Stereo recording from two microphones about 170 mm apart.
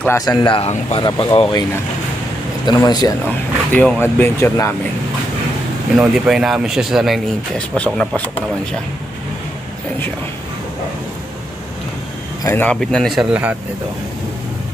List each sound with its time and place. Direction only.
0.2 s speech: 25° left (ahead or behind)
1.0 s speech: 25° left (ahead or behind)
3.3 s speech: 10° left (ahead or behind)
5.9 s speech: 5° right (ahead or behind)
12.4 s speech: 10° left (ahead or behind); by 13.6 s 10° right (ahead or behind)